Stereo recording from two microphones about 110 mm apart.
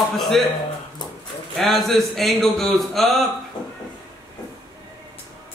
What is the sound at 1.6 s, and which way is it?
Speech, centre (ahead or behind).